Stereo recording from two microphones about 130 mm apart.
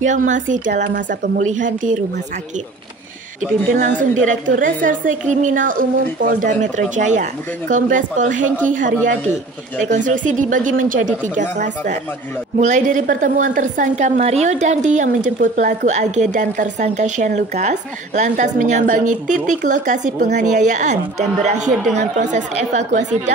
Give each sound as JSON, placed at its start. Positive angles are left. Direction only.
{"t": 0.0, "sound": "a woman's voice", "side_deg": -75}
{"t": 3.7, "sound": "a woman's voice", "side_deg": -80}
{"t": 8.6, "sound": "a woman's voice", "side_deg": -90}